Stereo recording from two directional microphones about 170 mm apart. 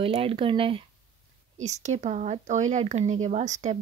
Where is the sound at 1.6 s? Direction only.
40° right (ahead or behind).